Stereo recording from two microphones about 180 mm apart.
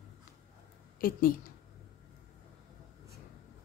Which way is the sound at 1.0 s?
55° left (ahead or behind).